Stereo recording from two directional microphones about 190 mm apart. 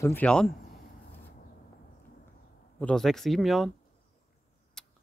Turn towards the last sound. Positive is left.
turn(degrees=5)  # may be behind; listen again after turning